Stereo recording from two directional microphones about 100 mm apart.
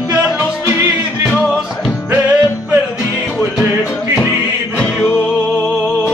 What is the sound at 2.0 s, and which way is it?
Music, 15° right (ahead or behind).